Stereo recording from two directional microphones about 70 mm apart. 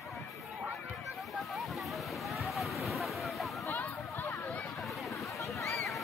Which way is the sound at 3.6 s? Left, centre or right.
Left.